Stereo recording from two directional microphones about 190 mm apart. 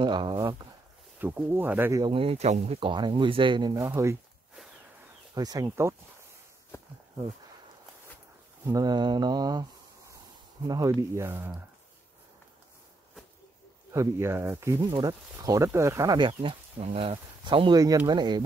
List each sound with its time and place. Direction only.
0.0 s speech: 25° right (ahead or behind)
1.2 s speech: 10° right (ahead or behind)
3.8 s speech: 15° right (ahead or behind)
5.3 s speech: 20° right (ahead or behind)
8.6 s speech: 20° right (ahead or behind)
10.7 s speech: 20° right (ahead or behind)
13.9 s speech: 15° right (ahead or behind)
16.3 s speech: 30° right (ahead or behind)